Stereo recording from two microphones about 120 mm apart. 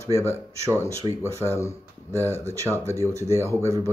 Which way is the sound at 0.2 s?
25° right (ahead or behind).